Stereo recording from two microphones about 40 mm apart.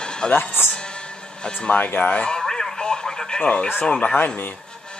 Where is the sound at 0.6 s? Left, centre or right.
Left.